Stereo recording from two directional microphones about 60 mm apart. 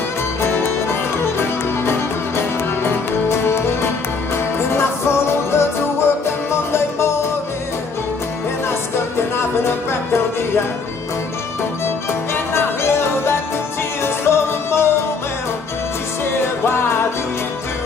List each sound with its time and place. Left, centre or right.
0.4 s music: left
9.6 s music: left
12.1 s music: left
16.3 s music: left